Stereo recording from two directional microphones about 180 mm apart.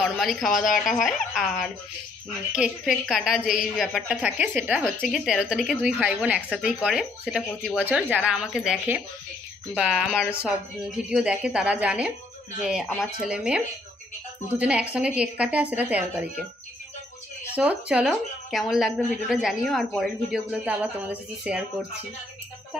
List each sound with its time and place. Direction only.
0.0 s a woman's voice: centre (ahead or behind)
14.6 s a woman's voice: 5° right (ahead or behind)
17.6 s speech: 5° right (ahead or behind)